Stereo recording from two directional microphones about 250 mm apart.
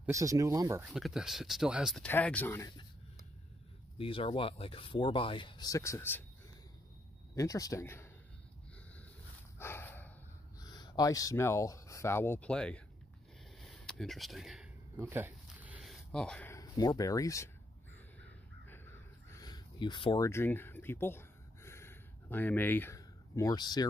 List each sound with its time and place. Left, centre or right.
0.0 s speech: centre
0.9 s speech: centre
4.0 s speech: left
7.3 s speech: centre
9.6 s dog: centre
10.6 s speech: centre
13.6 s a sound: centre
19.3 s a sound: centre